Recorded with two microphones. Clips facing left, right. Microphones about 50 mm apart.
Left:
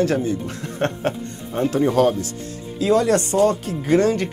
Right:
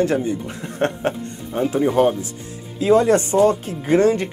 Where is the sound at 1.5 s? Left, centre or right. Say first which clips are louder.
Even; centre; by 4.3 s right.